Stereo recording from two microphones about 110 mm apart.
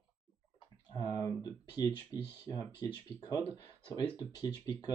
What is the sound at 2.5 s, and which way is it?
Speech, 45° left (ahead or behind).